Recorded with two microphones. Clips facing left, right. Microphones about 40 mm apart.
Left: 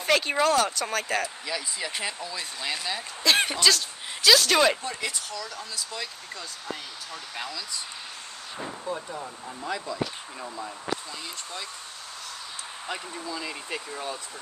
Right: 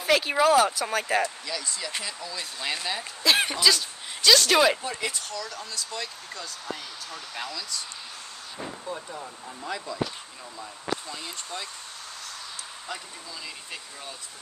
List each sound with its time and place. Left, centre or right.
0.0 s speech: centre
1.4 s speech: centre
2.6 s speech: centre
13.3 s speech: left